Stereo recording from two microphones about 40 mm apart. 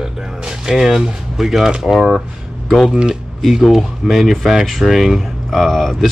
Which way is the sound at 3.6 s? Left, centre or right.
Centre.